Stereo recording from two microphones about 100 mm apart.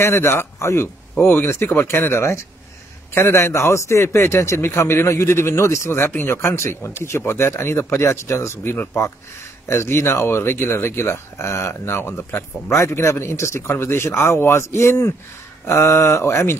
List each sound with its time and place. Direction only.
0.0 s speech: 25° left (ahead or behind)